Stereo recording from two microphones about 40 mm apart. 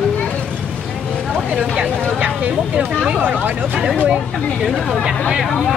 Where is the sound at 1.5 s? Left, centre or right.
Right.